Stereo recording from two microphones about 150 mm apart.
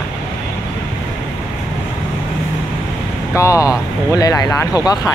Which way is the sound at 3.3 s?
20° left (ahead or behind).